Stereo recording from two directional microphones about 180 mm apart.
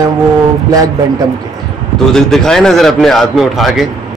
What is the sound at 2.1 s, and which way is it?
A man's voice, centre (ahead or behind).